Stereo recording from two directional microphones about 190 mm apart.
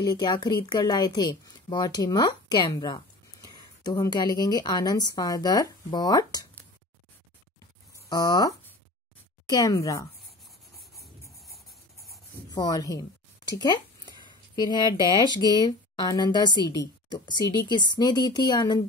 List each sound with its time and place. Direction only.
0.0 s speech: 20° left (ahead or behind)
8.1 s speech: 20° left (ahead or behind)
12.4 s a woman's voice: 20° left (ahead or behind)